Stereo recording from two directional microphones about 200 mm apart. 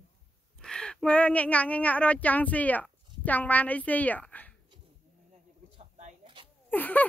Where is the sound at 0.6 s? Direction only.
5° left (ahead or behind).